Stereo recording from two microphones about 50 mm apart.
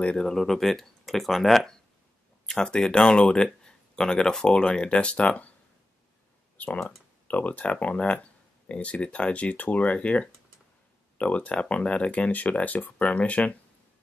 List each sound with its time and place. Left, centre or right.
0.2 s speech: centre; by 5.5 s left
6.5 s a sound: left
7.2 s speech: left